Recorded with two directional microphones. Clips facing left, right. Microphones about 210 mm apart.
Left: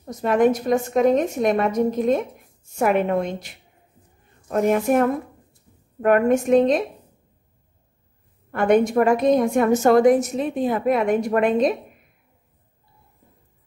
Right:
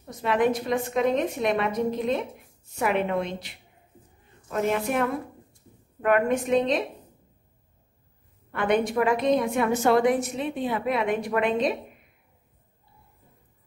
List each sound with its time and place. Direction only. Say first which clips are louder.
0.0 s a woman's voice: left 5 dB; 45° left (ahead or behind)
8.5 s a woman's voice: left 6 dB; 45° left (ahead or behind)